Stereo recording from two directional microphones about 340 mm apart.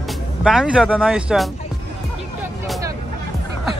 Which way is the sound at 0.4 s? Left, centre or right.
Centre.